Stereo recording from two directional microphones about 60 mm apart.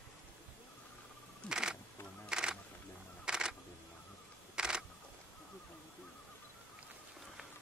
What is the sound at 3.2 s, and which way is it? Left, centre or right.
Camera, centre.